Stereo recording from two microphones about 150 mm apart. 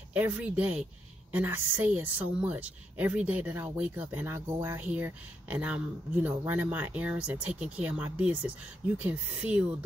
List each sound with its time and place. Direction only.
0.1 s a woman's voice: 10° right (ahead or behind)